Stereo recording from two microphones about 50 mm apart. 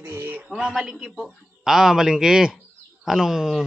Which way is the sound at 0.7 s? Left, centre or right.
Centre.